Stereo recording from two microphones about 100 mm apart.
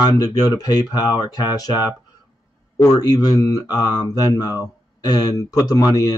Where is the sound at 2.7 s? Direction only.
40° left (ahead or behind).